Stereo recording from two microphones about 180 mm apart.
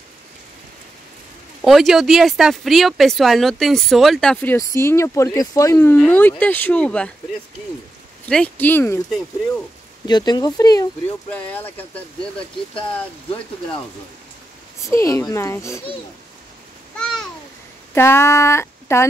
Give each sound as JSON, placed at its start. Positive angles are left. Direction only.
{"t": 1.6, "sound": "speech", "side_deg": 0}
{"t": 8.3, "sound": "a child's voice", "side_deg": 5}
{"t": 10.0, "sound": "speech", "side_deg": 25}
{"t": 11.2, "sound": "a child's voice", "side_deg": 10}
{"t": 14.8, "sound": "a child's voice", "side_deg": 15}
{"t": 16.9, "sound": "babbling", "side_deg": 5}
{"t": 17.9, "sound": "speech", "side_deg": 15}